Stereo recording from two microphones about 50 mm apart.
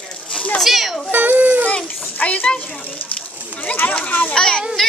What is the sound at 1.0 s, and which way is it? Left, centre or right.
Baby cry, right.